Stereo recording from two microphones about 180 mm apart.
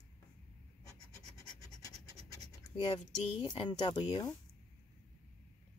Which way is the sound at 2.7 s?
30° left (ahead or behind).